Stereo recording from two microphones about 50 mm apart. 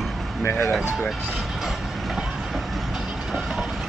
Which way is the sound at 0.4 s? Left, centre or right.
Left.